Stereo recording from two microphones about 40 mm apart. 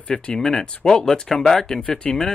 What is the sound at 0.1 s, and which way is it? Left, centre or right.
Speech, centre.